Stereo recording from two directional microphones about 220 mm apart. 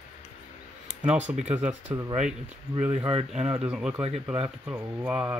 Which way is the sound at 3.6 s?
5° right (ahead or behind).